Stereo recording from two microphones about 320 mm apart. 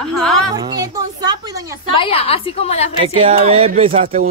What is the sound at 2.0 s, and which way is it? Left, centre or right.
Speech, centre.